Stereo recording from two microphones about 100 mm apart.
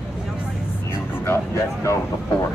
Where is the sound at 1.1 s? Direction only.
25° left (ahead or behind).